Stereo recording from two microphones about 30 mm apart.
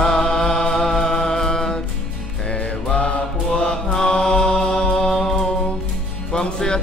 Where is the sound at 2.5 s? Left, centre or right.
Left.